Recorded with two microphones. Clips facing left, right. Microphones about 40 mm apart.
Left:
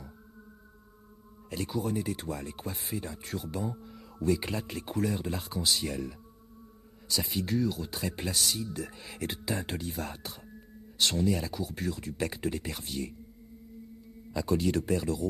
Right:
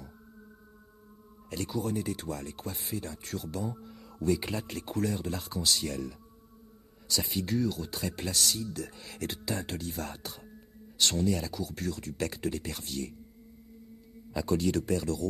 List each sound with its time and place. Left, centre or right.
1.5 s speech: centre
3.9 s speech: centre
14.4 s speech: centre